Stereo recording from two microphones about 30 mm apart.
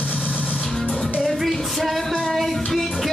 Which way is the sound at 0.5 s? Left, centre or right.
Centre.